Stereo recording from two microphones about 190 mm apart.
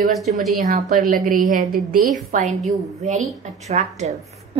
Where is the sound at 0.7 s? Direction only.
45° right (ahead or behind).